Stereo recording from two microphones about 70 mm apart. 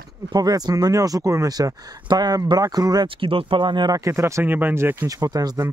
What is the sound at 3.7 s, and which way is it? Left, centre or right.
Speech, right.